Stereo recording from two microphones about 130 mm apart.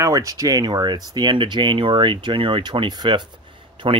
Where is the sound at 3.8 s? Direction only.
40° right (ahead or behind).